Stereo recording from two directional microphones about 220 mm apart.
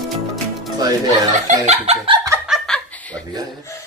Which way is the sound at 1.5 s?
30° right (ahead or behind).